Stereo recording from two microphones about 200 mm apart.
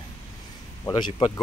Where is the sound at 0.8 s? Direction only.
20° left (ahead or behind).